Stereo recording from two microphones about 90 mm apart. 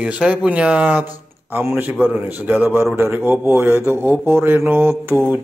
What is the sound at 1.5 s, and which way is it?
Mantra, 25° right (ahead or behind).